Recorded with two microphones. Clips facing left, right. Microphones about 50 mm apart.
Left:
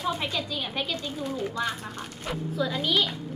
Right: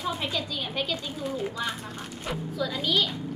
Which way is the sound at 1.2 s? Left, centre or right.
Centre.